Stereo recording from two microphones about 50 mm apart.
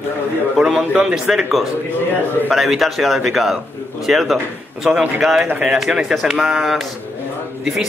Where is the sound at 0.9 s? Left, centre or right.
Centre.